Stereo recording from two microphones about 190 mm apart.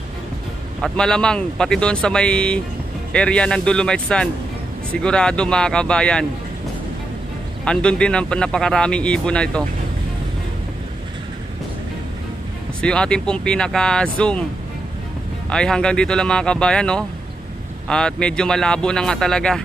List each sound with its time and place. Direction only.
0.7 s speech: 5° left (ahead or behind)
7.6 s speech: 5° left (ahead or behind)
12.8 s speech: 5° left (ahead or behind)
15.5 s speech: 5° left (ahead or behind)